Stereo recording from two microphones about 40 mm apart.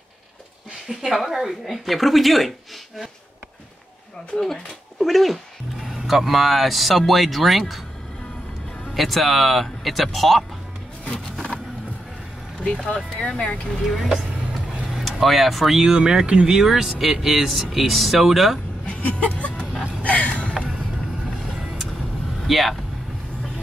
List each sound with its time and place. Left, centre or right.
0.8 s speech: centre
4.4 s speech: centre
8.9 s speech: centre
11.1 s a sound: centre
12.8 s speech: left
14.9 s speech: centre
16.0 s speech: centre
16.6 s speech: centre
18.9 s a sound: left
22.5 s speech: centre